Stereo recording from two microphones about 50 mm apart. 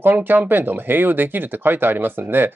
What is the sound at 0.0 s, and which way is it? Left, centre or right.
Speech, right.